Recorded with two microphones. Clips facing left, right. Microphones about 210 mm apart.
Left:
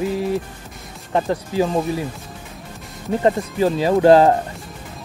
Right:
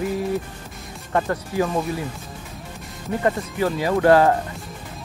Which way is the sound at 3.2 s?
25° left (ahead or behind).